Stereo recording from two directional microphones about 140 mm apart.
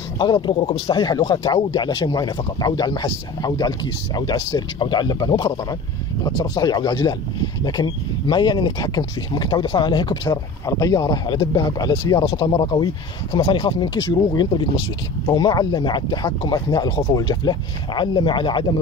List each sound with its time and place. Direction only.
0.2 s speech: 35° left (ahead or behind)